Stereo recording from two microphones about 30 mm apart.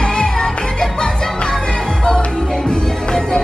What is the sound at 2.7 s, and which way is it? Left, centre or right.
Music, left.